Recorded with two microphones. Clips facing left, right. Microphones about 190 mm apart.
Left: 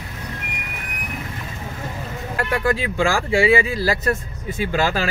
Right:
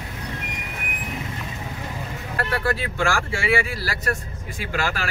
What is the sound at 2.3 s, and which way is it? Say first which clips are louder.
Speech: left 4 dB; 15° left (ahead or behind).